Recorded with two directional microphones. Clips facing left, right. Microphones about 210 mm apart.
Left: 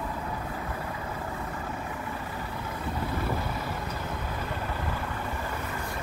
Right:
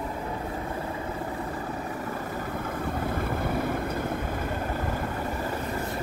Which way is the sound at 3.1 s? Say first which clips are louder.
Right 3 dB; 55° right (ahead or behind).